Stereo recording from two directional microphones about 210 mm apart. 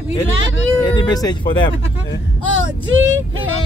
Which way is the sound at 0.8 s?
20° left (ahead or behind).